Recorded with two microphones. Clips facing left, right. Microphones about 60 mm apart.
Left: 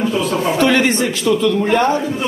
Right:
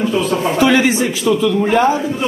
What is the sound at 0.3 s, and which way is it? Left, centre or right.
A man's voice, centre.